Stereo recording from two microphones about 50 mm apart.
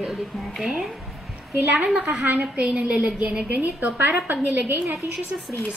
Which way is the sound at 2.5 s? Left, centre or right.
Right.